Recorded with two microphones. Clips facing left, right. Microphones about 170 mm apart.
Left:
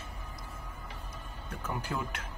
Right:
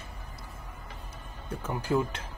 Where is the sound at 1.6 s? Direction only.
30° right (ahead or behind).